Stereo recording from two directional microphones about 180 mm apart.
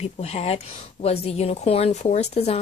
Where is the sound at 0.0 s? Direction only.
35° left (ahead or behind).